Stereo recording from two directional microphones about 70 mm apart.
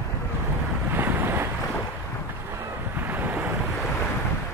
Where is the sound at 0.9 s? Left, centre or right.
Right.